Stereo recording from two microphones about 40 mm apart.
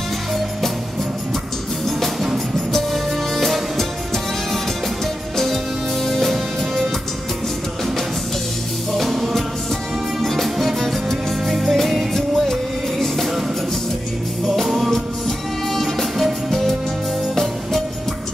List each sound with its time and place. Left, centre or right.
2.3 s music: centre
8.9 s music: centre
14.4 s music: centre